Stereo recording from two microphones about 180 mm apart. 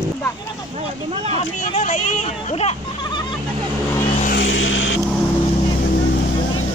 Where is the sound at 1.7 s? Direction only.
40° left (ahead or behind).